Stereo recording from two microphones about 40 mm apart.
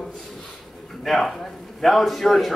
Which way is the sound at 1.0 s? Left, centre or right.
Centre.